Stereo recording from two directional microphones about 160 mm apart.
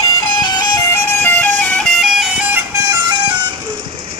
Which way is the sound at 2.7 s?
20° right (ahead or behind).